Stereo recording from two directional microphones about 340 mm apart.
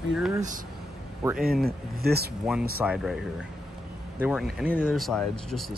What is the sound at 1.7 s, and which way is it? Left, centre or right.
Speech, right.